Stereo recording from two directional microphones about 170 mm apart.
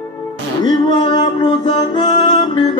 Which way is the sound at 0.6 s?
30° left (ahead or behind).